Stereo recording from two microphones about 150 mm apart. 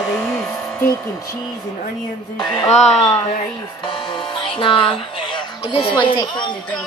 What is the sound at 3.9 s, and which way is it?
Speech, 30° left (ahead or behind).